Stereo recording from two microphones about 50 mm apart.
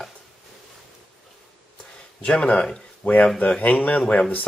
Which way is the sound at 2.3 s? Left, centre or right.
Left.